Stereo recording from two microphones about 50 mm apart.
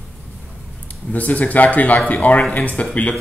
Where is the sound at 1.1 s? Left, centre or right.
Left.